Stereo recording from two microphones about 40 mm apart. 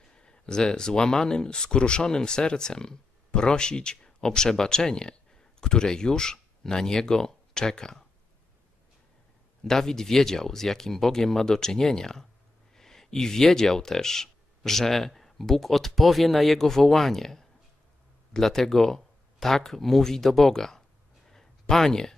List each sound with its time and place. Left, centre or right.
0.1 s speech: left
9.6 s speech: centre
21.3 s a sound: centre